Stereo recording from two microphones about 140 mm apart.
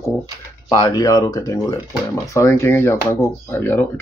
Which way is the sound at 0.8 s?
30° left (ahead or behind).